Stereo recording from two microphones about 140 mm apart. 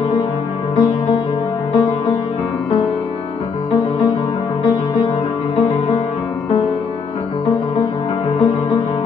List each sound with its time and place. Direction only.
0.7 s music: 30° left (ahead or behind)
4.6 s music: 30° left (ahead or behind)
8.4 s music: 30° left (ahead or behind)